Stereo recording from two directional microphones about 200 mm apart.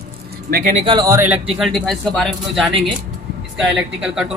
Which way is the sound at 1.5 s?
Centre (ahead or behind).